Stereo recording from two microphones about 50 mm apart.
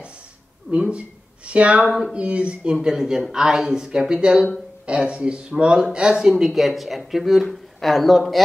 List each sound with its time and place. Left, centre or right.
0.7 s a man's voice: right; by 8.4 s centre